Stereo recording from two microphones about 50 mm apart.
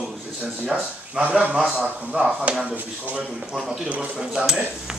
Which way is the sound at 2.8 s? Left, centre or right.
Right.